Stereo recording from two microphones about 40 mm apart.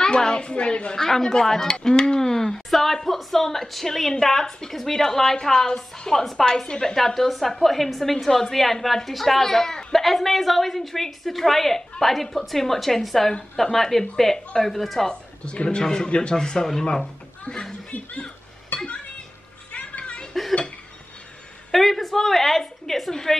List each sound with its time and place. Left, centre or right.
0.0 s a woman's voice: centre
0.9 s a woman's voice: centre
15.0 s speech: left
17.9 s a sound: left
21.7 s a woman's voice: centre